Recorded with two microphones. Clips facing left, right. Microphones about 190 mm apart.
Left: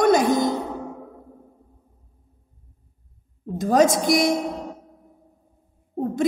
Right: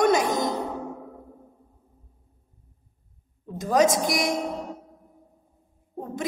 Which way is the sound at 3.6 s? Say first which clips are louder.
Left 3 dB; 30° left (ahead or behind).